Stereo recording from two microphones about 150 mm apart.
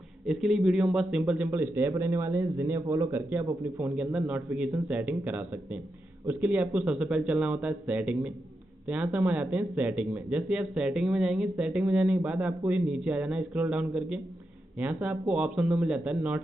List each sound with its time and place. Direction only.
0.3 s speech: 5° right (ahead or behind)